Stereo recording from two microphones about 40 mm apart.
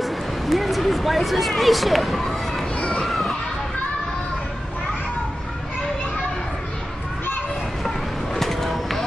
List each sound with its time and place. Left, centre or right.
0.0 s speech: centre
2.7 s children playing: left
3.1 s children playing: centre
8.4 s vehicle: centre